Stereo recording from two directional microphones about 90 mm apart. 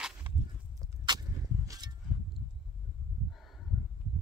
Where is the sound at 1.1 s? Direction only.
50° right (ahead or behind).